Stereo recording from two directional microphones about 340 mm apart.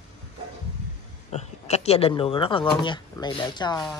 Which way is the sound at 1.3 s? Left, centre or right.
Centre.